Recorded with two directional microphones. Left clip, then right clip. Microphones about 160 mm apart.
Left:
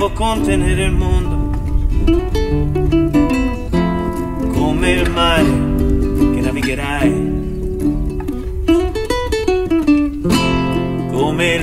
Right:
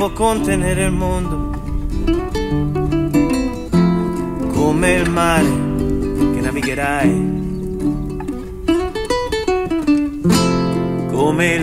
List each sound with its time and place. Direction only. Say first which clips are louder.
0.0 s music: even; 20° right (ahead or behind)
2.0 s music: left 3 dB; centre (ahead or behind)
3.8 s music: even; 20° right (ahead or behind)
5.8 s music: left 2 dB; centre (ahead or behind)
6.8 s music: right 2 dB; 20° right (ahead or behind)
8.6 s music: left 2 dB; centre (ahead or behind)
10.3 s music: even; 15° right (ahead or behind)